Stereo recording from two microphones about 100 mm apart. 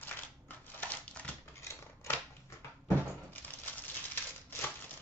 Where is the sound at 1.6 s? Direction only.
30° left (ahead or behind).